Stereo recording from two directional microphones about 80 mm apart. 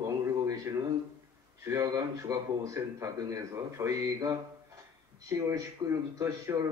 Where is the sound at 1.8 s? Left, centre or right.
Right.